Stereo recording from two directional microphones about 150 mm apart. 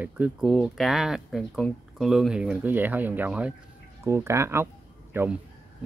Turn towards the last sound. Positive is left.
turn(degrees=-15)  # may be behind; listen again after turning